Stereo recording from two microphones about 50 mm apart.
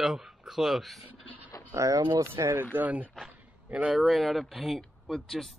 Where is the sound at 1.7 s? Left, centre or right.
Right.